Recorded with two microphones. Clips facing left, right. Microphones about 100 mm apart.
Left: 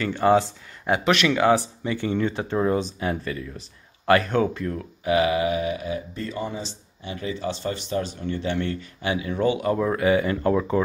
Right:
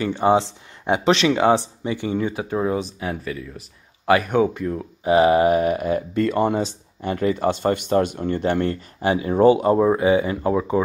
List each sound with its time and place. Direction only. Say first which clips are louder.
0.0 s speech: right 1 dB; 20° right (ahead or behind)
5.0 s speech: right 6 dB; 35° right (ahead or behind); by 10.8 s 15° right (ahead or behind)